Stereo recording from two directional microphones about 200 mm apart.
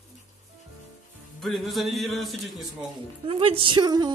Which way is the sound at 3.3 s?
25° right (ahead or behind).